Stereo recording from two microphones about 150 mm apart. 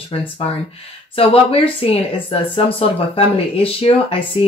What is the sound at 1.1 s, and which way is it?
Speech, 40° left (ahead or behind).